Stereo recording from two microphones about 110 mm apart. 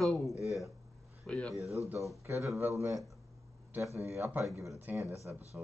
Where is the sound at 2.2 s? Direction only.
25° right (ahead or behind).